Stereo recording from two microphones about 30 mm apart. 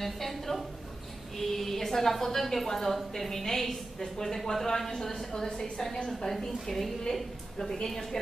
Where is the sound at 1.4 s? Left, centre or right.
Centre.